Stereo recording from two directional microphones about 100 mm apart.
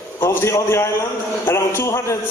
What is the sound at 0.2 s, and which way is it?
A man's voice, 25° left (ahead or behind).